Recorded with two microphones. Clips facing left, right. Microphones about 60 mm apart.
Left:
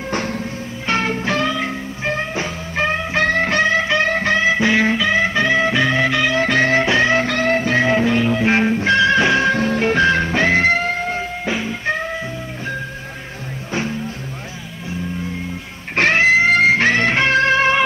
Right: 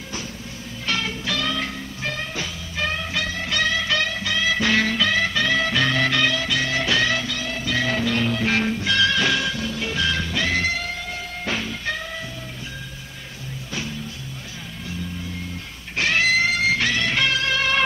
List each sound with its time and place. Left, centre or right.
0.1 s music: left
0.8 s music: left
3.3 s music: left
3.5 s music: left
4.1 s music: left; by 6.3 s centre
6.3 s music: left
7.2 s music: left
9.5 s music: left
11.4 s music: centre
16.0 s music: left